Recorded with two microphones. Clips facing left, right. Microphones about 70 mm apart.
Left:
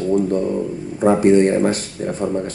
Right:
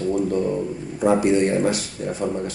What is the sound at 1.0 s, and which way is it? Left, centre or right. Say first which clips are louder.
Speech: left 5 dB; left.